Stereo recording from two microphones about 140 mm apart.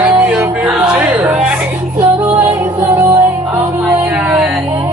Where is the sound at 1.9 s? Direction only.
20° right (ahead or behind).